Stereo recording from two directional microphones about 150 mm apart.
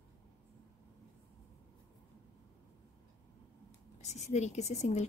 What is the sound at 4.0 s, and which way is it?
A woman's voice, 50° left (ahead or behind).